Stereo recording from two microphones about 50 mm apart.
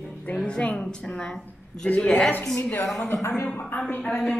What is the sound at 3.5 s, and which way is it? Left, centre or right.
Speech, left.